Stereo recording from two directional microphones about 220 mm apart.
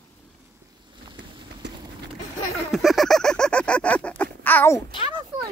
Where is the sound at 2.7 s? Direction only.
Centre (ahead or behind).